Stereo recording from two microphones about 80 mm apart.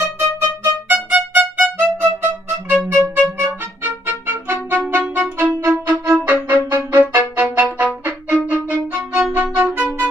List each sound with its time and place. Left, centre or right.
0.8 s music: centre
7.8 s violin: right